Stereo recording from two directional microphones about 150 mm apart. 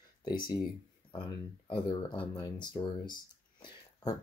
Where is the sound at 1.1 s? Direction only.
30° left (ahead or behind).